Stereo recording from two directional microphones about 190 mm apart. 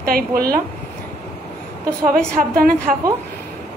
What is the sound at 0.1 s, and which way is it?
Speech, 50° right (ahead or behind).